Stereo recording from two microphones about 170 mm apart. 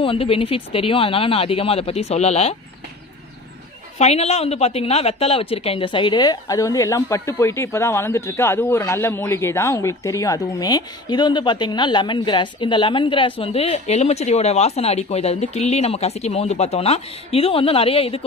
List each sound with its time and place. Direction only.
0.0 s speech: 35° left (ahead or behind)
4.0 s speech: 40° left (ahead or behind)